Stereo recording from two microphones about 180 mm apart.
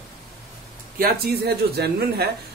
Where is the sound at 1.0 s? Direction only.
60° right (ahead or behind).